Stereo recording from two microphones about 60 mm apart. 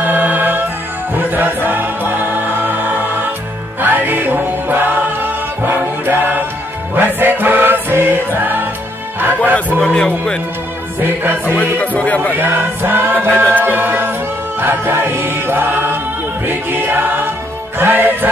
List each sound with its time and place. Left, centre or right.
0.0 s music: right
3.8 s music: right
9.8 s speech: centre
11.0 s music: right
11.8 s speech: left
12.4 s music: right